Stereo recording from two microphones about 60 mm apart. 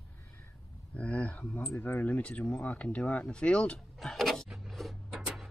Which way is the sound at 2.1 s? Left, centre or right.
Left.